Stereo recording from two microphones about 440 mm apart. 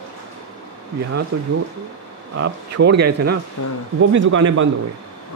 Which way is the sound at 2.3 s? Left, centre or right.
Right.